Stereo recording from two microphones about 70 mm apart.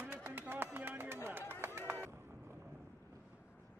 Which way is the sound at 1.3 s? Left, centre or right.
Right.